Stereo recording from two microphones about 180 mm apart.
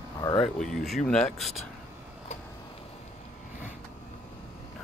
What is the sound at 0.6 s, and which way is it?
Speech, centre (ahead or behind).